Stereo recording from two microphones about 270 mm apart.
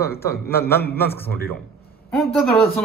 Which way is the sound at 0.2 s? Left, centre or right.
Centre.